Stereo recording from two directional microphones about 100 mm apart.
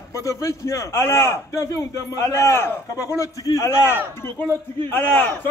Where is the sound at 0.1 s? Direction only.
35° left (ahead or behind).